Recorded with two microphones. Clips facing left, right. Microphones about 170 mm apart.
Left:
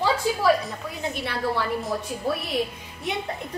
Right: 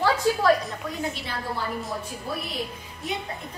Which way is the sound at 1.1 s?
70° left (ahead or behind).